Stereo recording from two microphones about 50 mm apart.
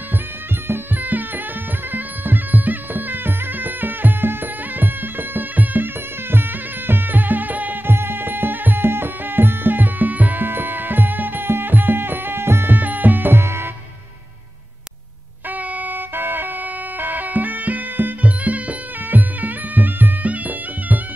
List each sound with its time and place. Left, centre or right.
1.0 s music: right
6.9 s music: right
7.9 s music: right
12.7 s music: right
13.4 s music: right
15.8 s music: right